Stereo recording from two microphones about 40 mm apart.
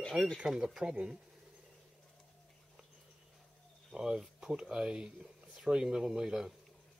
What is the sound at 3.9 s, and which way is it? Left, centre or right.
Speech, centre.